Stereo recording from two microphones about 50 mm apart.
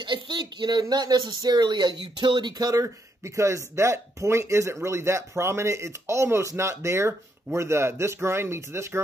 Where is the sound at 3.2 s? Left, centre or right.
Right.